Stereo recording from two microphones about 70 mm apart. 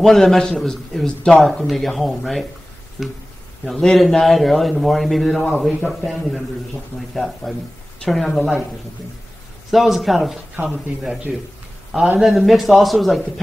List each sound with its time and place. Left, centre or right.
0.0 s a man's voice: centre
3.6 s a man's voice: centre
9.7 s a man's voice: centre
10.5 s speech: centre
11.3 s a man's voice: centre